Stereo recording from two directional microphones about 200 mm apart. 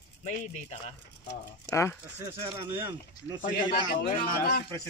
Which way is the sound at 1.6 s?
15° left (ahead or behind).